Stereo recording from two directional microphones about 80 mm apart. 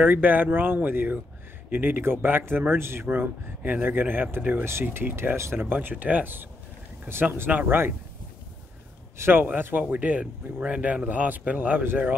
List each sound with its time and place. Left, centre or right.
0.0 s speech: right
9.2 s speech: right